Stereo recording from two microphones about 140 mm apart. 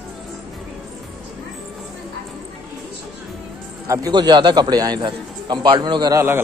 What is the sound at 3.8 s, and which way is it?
A man's voice, 25° right (ahead or behind).